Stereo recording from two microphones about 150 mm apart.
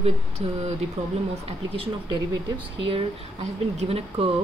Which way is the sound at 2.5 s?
35° right (ahead or behind).